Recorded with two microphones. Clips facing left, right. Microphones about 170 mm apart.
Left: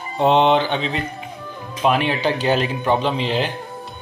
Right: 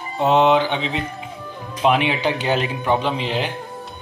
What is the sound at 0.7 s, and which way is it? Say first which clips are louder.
Speech: left 1 dB; 20° right (ahead or behind).